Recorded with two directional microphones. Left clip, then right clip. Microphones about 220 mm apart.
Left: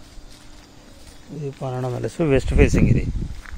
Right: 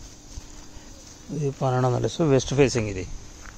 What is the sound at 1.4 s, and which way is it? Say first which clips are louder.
Speech: right 4 dB; 20° right (ahead or behind).